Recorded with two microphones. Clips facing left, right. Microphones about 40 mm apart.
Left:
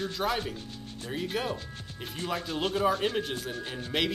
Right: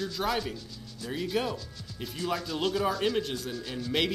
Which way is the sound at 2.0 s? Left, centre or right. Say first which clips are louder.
Right 1 dB; left.